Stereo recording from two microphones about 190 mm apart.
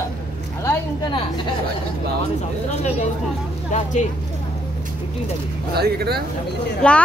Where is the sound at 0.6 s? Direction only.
15° left (ahead or behind).